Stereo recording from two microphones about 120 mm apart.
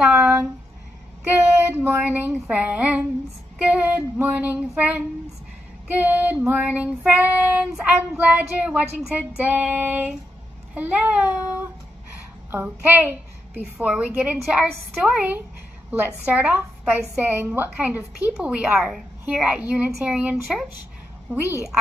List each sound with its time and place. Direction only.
0.0 s a sound: 10° right (ahead or behind)
1.7 s child singing: 20° right (ahead or behind)
16.3 s speech: 10° right (ahead or behind)
17.3 s child singing: 15° right (ahead or behind)